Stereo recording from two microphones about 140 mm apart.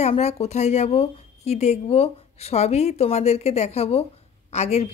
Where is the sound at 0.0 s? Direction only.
50° left (ahead or behind).